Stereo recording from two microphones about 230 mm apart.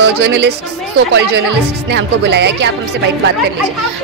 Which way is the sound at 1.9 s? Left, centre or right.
Right.